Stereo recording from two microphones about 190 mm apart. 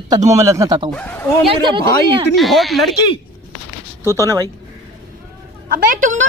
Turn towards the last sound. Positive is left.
turn(degrees=-45)  # may be behind; listen again after turning